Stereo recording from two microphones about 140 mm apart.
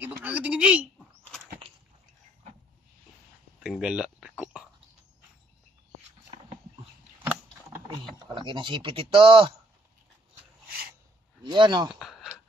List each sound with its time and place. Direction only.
0.0 s a sound: 10° right (ahead or behind)
3.5 s speech: 5° right (ahead or behind)
7.9 s speech: 35° right (ahead or behind)
11.4 s speech: 35° right (ahead or behind)
11.9 s speech: centre (ahead or behind)